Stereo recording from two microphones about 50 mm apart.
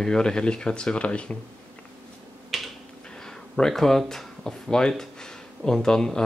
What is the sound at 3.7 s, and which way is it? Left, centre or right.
Speech, centre.